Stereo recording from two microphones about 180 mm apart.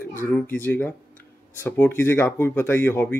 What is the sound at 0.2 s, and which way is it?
Speech, 5° left (ahead or behind).